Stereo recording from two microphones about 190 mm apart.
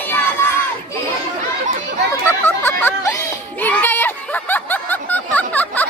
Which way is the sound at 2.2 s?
10° left (ahead or behind).